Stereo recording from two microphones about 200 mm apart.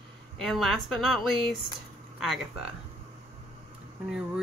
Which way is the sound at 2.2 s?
Centre (ahead or behind).